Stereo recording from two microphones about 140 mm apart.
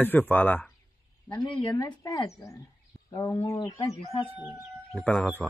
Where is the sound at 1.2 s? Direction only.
35° left (ahead or behind).